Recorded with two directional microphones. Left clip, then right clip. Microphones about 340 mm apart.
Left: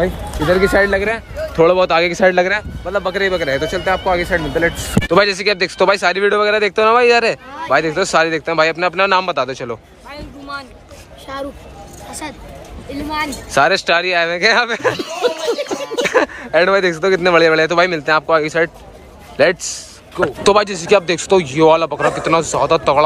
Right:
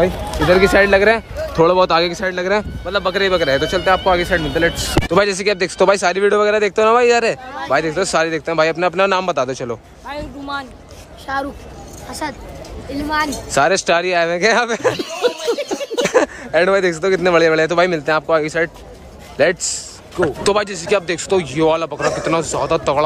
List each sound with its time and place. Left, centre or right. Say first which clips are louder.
0.7 s speech: right 1 dB; centre
0.9 s a man's voice: right 5 dB; right
1.5 s speech: left 1 dB; centre
13.1 s speech: even; centre